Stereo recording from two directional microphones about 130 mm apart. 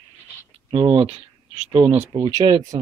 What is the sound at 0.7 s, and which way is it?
Speech, 45° right (ahead or behind).